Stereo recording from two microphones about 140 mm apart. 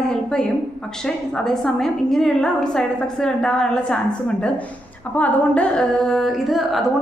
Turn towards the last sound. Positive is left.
turn(degrees=0)  # may be behind; listen again after turning